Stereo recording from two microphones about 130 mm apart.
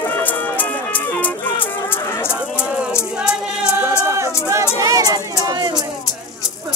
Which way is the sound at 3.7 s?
20° right (ahead or behind).